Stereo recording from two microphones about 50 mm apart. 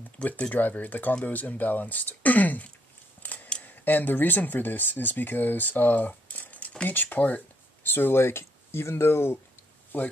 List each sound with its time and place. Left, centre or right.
0.2 s speech: left
7.8 s speech: left
9.9 s speech: left